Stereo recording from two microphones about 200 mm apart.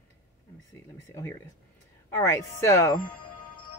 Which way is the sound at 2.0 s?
10° left (ahead or behind).